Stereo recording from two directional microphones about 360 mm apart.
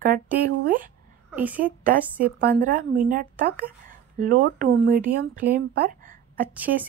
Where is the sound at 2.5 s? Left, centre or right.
Right.